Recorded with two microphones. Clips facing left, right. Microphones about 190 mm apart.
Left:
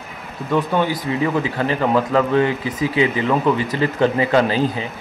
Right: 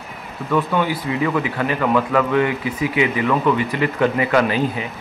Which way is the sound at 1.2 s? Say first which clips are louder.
Left 1 dB; 30° left (ahead or behind).